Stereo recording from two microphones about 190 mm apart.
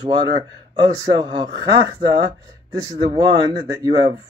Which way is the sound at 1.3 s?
20° right (ahead or behind).